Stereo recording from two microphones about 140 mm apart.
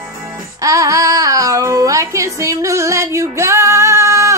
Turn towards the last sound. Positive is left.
turn(degrees=-20)  # may be behind; listen again after turning